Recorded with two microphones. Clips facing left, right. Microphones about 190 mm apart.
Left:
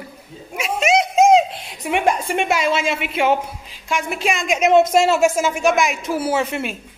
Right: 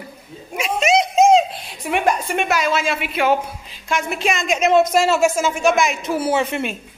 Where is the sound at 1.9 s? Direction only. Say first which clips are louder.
Even; 25° left (ahead or behind).